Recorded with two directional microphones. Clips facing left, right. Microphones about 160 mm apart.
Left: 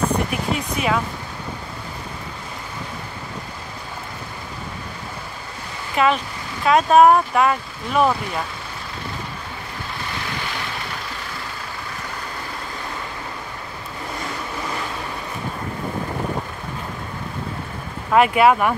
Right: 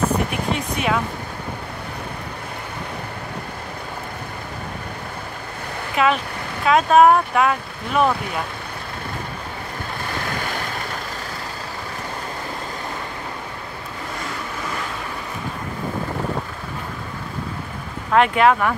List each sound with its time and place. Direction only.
0.3 s a sound: centre (ahead or behind)
5.9 s speech: centre (ahead or behind)
10.1 s vehicle: 45° right (ahead or behind)
18.1 s speech: 5° left (ahead or behind)